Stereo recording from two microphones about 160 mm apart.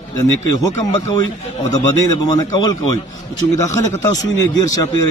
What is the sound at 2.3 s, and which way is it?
A man's voice, 25° left (ahead or behind).